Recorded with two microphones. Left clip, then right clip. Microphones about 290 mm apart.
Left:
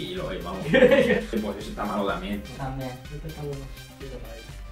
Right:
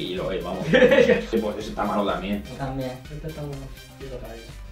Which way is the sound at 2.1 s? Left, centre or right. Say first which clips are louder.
Right 3 dB; centre.